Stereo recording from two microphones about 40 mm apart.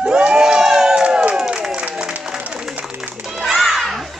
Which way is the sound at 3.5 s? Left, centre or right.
Centre.